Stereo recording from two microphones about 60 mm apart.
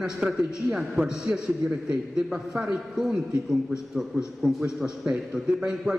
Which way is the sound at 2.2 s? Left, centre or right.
Centre.